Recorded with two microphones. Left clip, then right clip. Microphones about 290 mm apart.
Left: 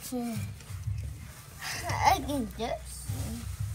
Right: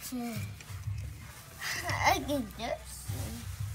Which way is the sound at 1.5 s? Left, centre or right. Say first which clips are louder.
Left 1 dB; centre.